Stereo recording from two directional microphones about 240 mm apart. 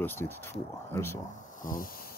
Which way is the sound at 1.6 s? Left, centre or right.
Left.